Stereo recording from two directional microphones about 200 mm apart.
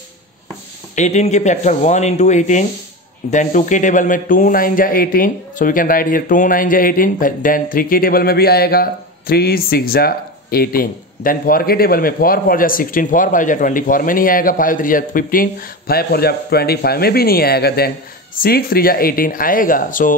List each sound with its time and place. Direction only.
0.9 s a man's voice: 35° left (ahead or behind)